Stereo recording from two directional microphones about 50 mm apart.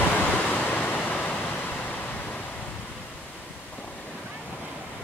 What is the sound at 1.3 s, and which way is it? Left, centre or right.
Vehicle, left.